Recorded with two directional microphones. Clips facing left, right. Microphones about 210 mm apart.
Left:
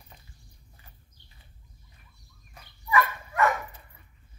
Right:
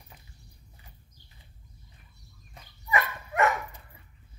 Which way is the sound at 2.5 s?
25° right (ahead or behind).